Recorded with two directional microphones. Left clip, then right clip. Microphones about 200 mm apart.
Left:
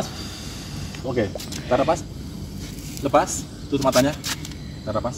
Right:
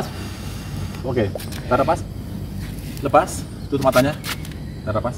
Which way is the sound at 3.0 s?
15° left (ahead or behind).